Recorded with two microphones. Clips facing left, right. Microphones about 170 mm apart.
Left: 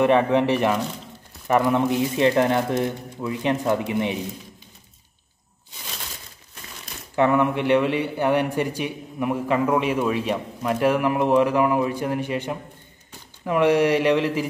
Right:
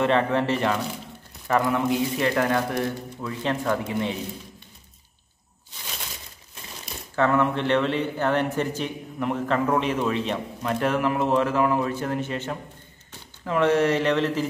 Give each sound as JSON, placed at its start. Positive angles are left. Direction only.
{"t": 0.0, "sound": "a man's voice", "side_deg": 15}
{"t": 7.2, "sound": "a man's voice", "side_deg": 15}